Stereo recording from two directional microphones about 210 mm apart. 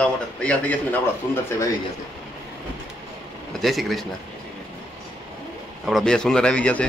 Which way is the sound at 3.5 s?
Centre (ahead or behind).